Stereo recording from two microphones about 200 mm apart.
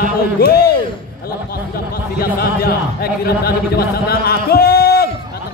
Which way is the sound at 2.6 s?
50° left (ahead or behind).